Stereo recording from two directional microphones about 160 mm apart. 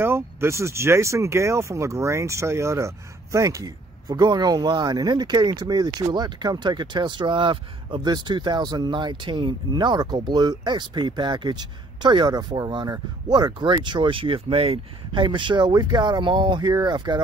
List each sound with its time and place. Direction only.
0.0 s speech: 15° right (ahead or behind)